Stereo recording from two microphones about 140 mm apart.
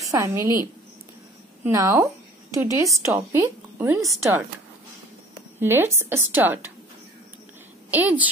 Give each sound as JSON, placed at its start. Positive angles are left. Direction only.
{"t": 0.0, "sound": "a woman's voice", "side_deg": -20}
{"t": 1.6, "sound": "a woman's voice", "side_deg": -20}
{"t": 5.6, "sound": "a woman's voice", "side_deg": -15}
{"t": 7.9, "sound": "a woman's voice", "side_deg": -10}